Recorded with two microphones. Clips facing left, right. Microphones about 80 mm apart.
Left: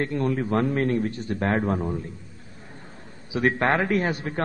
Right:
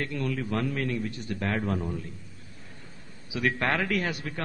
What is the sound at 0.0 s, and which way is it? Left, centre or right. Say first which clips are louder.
A man's voice: left 6 dB; left.